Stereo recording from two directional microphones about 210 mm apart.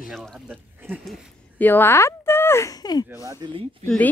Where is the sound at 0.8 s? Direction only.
5° right (ahead or behind).